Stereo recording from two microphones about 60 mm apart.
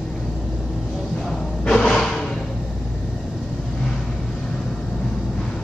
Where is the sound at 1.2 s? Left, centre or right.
Centre.